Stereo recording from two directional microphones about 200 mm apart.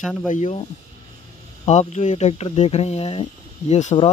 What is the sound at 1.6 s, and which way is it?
Speech, 35° left (ahead or behind).